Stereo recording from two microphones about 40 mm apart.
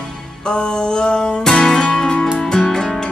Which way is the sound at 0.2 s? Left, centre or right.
Centre.